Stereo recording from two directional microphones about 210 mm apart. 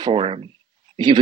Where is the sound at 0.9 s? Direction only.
20° right (ahead or behind).